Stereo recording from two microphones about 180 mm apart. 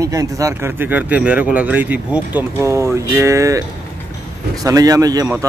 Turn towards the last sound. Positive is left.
turn(degrees=-20)  # may be behind; listen again after turning